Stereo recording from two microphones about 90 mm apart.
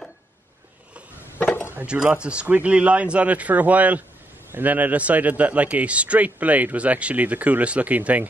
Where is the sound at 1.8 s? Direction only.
15° right (ahead or behind).